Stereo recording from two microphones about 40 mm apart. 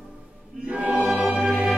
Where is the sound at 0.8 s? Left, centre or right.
Right.